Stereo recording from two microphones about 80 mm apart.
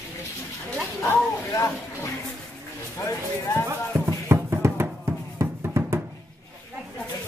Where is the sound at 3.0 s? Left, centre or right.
Left.